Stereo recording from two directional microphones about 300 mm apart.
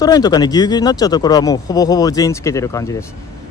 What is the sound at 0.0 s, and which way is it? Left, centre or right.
Speech, centre.